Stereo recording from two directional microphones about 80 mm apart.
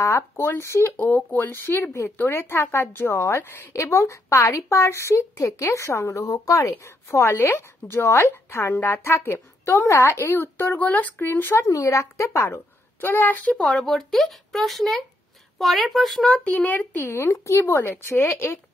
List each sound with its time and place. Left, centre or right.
0.0 s speech: left
0.9 s speech: left
11.5 s speech: left
13.6 s speech: centre
16.4 s speech: centre
17.1 s speech: left